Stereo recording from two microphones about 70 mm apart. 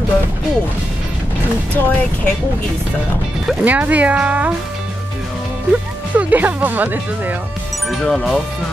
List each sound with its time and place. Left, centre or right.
1.8 s speech: left
3.6 s speech: right
6.1 s speech: right
8.0 s speech: centre